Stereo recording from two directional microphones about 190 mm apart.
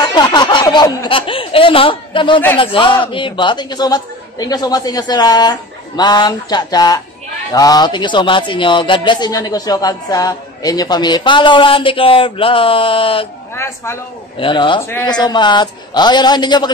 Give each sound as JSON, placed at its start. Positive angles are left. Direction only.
{"t": 0.0, "sound": "a sound", "side_deg": 25}
{"t": 2.6, "sound": "speech", "side_deg": 25}
{"t": 14.4, "sound": "speech", "side_deg": 25}
{"t": 14.8, "sound": "speech", "side_deg": 10}